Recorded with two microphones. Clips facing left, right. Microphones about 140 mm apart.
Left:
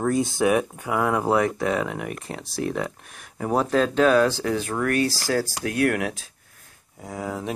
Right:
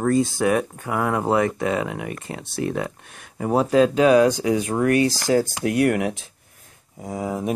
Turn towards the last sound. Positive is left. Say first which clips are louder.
# right 4 dB
turn(degrees=-20)  # may be behind; listen again after turning